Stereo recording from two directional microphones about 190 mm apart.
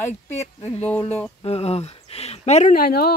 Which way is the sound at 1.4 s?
35° left (ahead or behind).